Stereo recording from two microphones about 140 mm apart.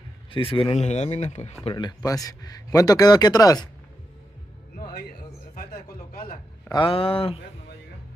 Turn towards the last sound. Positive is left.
turn(degrees=40)  # may be behind; listen again after turning